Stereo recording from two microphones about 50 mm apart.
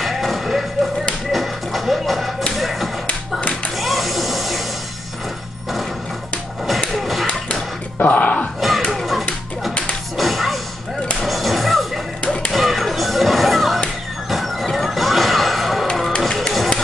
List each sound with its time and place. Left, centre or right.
0.0 s music: centre
2.5 s tap: centre
3.1 s tap: left
3.7 s a sound: centre
7.0 s music: centre
8.0 s dog: left
8.5 s a sound: centre
8.9 s music: centre
10.1 s whip: centre
11.1 s music: centre
12.5 s whip: centre
14.3 s music: centre